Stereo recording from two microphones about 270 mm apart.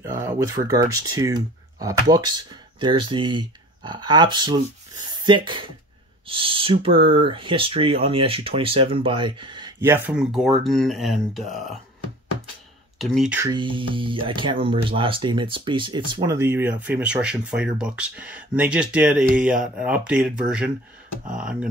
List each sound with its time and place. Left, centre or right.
0.0 s speech: centre
13.0 s speech: centre
13.5 s speech: centre